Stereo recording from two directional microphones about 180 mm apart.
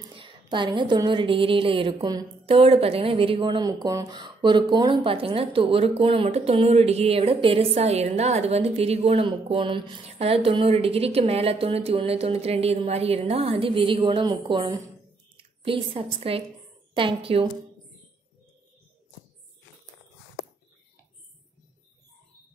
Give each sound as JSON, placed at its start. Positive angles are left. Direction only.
{"t": 0.1, "sound": "a woman's voice", "side_deg": -30}